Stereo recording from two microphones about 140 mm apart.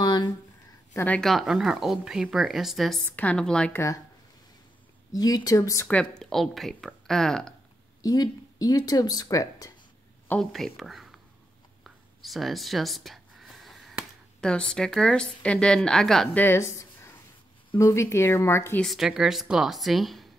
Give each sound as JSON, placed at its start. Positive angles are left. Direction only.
{"t": 0.0, "sound": "a sound", "side_deg": 30}
{"t": 0.9, "sound": "speech", "side_deg": 10}
{"t": 3.1, "sound": "speech", "side_deg": 10}
{"t": 5.1, "sound": "speech", "side_deg": 25}
{"t": 5.9, "sound": "speech", "side_deg": 5}
{"t": 8.0, "sound": "speech", "side_deg": 25}
{"t": 10.4, "sound": "speech", "side_deg": 0}
{"t": 16.4, "sound": "a sound", "side_deg": 20}
{"t": 17.7, "sound": "speech", "side_deg": 20}
{"t": 18.8, "sound": "speech", "side_deg": 0}